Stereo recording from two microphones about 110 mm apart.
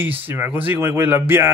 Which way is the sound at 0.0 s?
20° right (ahead or behind).